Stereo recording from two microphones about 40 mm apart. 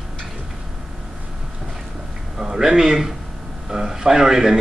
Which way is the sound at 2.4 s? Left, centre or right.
Centre.